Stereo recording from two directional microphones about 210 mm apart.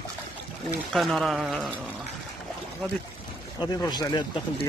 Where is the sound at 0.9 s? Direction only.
Centre (ahead or behind).